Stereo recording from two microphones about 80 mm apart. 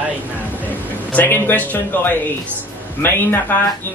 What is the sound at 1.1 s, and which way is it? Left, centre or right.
A man's voice, left.